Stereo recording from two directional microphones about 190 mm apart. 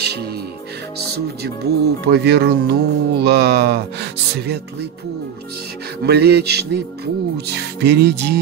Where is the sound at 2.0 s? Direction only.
60° right (ahead or behind).